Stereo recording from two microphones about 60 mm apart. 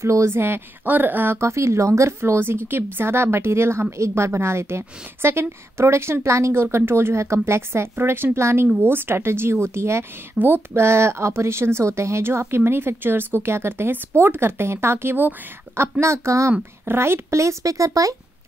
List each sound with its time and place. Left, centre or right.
0.0 s a woman's voice: right
0.8 s a woman's voice: right
1.4 s a woman's voice: right
2.1 s a woman's voice: right
16.8 s speech: right